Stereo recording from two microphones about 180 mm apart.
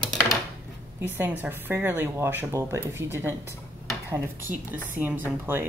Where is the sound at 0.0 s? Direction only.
5° left (ahead or behind).